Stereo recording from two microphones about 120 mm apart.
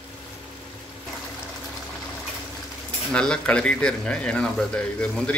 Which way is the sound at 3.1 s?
10° left (ahead or behind).